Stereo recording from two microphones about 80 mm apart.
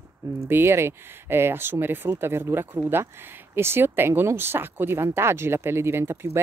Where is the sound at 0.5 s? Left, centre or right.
Right.